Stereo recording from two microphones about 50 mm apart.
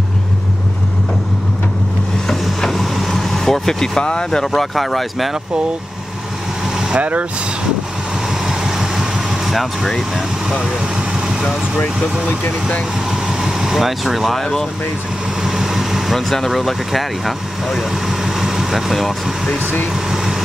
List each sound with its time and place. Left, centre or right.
2.2 s vehicle: centre
4.6 s speech: centre
7.0 s speech: right
8.3 s vehicle: centre
9.5 s speech: centre
11.1 s vehicle: centre
12.3 s speech: left
13.1 s vehicle: centre
14.4 s speech: centre
15.4 s speech: centre
19.9 s vehicle: centre